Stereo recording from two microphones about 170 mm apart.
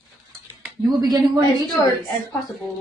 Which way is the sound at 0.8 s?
25° right (ahead or behind).